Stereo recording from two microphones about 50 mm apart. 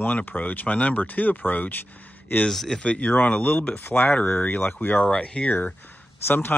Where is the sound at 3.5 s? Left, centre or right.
Left.